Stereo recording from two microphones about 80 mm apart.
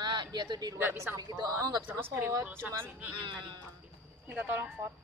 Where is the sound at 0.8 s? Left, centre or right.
Right.